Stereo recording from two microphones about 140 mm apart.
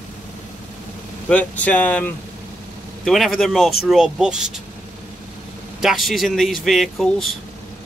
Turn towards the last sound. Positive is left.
turn(degrees=0)  # may be behind; listen again after turning